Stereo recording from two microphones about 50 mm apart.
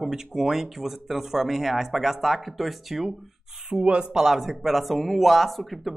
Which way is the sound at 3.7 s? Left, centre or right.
Centre.